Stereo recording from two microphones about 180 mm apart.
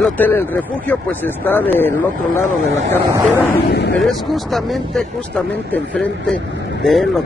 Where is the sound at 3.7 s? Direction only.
70° left (ahead or behind).